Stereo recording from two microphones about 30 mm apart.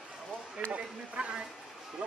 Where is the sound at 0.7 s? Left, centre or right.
Right.